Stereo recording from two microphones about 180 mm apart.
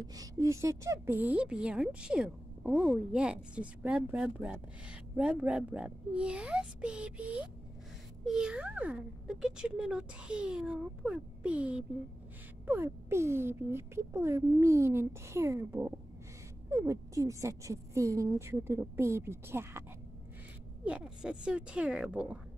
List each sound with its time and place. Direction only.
0.0 s speech: 20° right (ahead or behind)
20.8 s speech: 5° right (ahead or behind)